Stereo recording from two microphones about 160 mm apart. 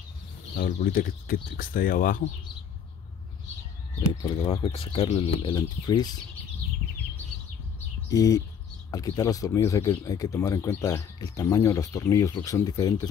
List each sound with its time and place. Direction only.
0.6 s speech: 60° left (ahead or behind)
4.2 s speech: 35° left (ahead or behind)
8.1 s speech: 20° left (ahead or behind)